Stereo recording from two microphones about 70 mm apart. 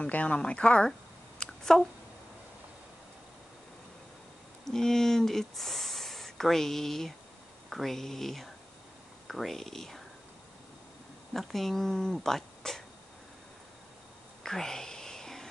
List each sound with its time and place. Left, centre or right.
0.0 s speech: left
1.4 s a sound: centre
4.6 s speech: centre
11.3 s speech: centre
14.4 s whispering: centre